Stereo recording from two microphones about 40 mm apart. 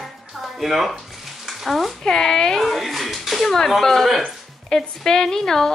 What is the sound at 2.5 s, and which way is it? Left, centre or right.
A child's voice, centre.